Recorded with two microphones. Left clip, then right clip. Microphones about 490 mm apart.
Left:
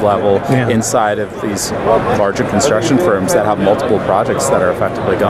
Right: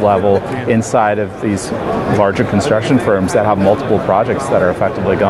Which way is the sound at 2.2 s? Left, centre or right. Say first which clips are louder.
Even; right.